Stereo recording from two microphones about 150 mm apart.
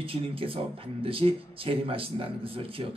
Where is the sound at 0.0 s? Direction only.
40° right (ahead or behind).